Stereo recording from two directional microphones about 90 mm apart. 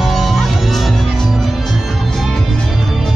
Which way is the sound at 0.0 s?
Centre (ahead or behind).